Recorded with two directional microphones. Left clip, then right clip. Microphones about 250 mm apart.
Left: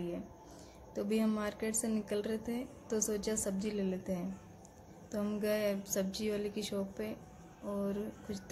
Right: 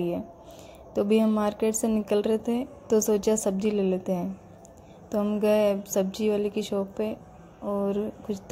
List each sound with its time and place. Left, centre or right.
0.9 s a woman's voice: centre